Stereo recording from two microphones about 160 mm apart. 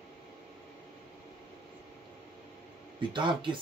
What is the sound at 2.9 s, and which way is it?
Speech, 30° right (ahead or behind).